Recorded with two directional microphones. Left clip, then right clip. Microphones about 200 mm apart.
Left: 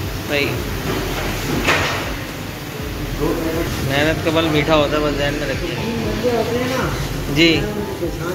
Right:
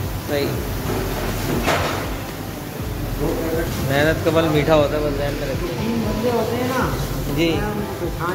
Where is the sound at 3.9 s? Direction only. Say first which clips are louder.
Even; 30° right (ahead or behind).